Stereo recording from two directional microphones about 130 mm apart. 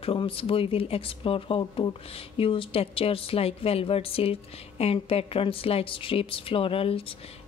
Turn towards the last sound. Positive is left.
turn(degrees=45)  # may be behind; listen again after turning